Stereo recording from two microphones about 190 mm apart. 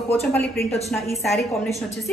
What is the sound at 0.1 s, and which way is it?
Speech, 10° left (ahead or behind).